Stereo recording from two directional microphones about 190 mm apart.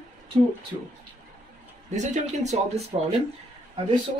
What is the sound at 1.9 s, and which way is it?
Speech, 40° right (ahead or behind).